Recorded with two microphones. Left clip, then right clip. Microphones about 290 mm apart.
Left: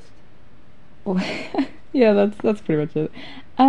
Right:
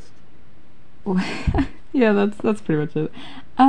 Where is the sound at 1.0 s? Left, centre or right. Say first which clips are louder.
Even; centre.